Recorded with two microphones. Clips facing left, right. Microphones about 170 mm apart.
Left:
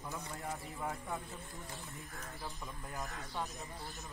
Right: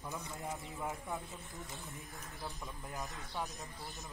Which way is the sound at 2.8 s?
15° right (ahead or behind).